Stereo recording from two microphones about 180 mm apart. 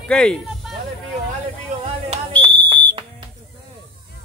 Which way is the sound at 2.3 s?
10° left (ahead or behind).